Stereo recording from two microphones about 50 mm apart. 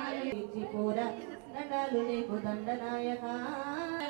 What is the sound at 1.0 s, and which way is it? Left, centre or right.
A man's voice, centre.